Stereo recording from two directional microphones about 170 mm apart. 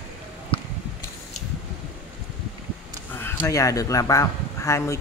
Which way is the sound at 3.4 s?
20° left (ahead or behind).